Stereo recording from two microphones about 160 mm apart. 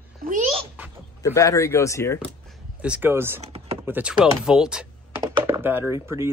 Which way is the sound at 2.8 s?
10° right (ahead or behind).